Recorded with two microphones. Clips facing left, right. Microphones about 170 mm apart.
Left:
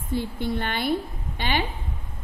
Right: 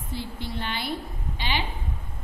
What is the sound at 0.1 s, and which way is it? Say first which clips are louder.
Speech: left 8 dB; 50° left (ahead or behind).